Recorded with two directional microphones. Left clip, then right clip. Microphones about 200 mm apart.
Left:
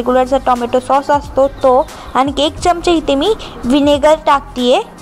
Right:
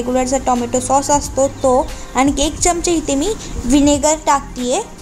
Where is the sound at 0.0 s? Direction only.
15° left (ahead or behind).